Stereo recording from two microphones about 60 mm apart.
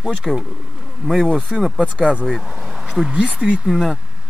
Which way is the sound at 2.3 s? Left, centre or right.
Centre.